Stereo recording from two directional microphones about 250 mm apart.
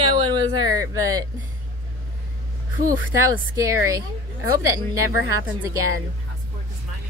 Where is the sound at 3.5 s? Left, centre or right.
Centre.